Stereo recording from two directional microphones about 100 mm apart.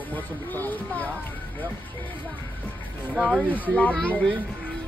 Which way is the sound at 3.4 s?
15° left (ahead or behind).